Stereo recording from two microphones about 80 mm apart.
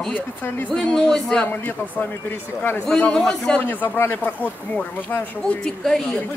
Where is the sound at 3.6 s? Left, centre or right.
Left.